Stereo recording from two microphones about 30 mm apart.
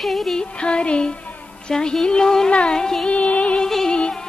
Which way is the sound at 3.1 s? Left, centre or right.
Left.